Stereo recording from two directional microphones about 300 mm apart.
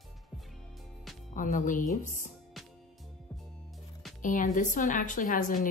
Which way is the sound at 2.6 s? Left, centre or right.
Centre.